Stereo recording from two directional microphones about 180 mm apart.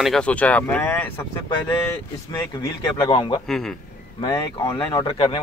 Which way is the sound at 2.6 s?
25° left (ahead or behind).